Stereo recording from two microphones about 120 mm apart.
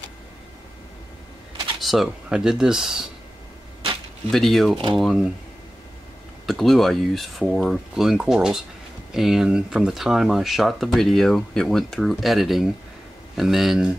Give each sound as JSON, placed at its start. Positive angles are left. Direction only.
{"t": 1.8, "sound": "speech", "side_deg": 0}
{"t": 4.3, "sound": "speech", "side_deg": 5}
{"t": 6.4, "sound": "speech", "side_deg": 0}